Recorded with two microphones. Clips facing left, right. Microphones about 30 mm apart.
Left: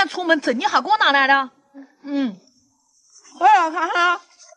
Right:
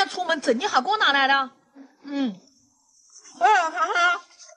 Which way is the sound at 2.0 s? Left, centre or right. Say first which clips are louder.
Left 4 dB; centre.